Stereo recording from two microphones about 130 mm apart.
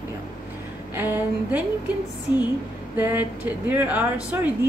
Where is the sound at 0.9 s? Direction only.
15° right (ahead or behind).